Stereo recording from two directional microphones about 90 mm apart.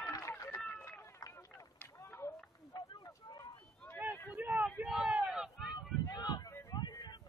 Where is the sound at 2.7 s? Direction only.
45° left (ahead or behind).